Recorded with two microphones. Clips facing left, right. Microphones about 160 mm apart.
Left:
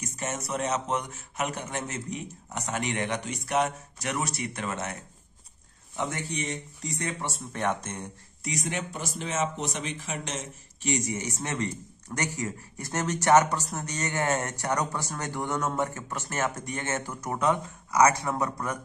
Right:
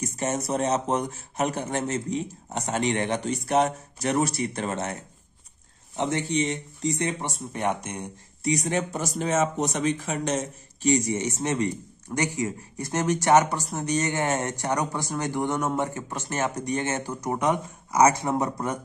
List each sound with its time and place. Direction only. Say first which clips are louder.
0.0 s speech: right 6 dB; 35° right (ahead or behind)
5.9 s speech: right 7 dB; 25° right (ahead or behind)
8.5 s speech: right 7 dB; 35° right (ahead or behind)